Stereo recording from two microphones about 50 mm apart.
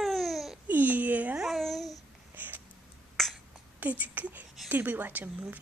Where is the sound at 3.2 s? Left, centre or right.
Centre.